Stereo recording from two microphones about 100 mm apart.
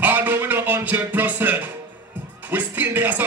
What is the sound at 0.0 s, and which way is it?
Music, 20° right (ahead or behind).